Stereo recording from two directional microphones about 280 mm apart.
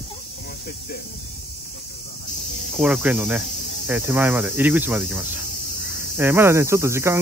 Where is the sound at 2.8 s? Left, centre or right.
Centre.